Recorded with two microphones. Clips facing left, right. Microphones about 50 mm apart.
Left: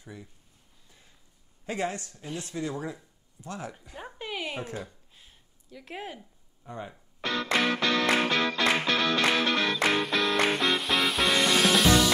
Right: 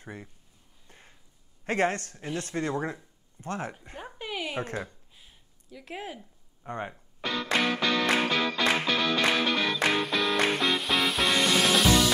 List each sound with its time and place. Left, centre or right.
0.0 s speech: right
0.8 s a sound: right
1.7 s speech: right
4.0 s speech: centre
4.8 s a sound: centre
6.6 s speech: right
7.2 s music: centre